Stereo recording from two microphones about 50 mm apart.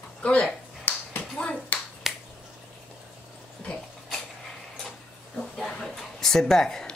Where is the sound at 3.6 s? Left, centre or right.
Centre.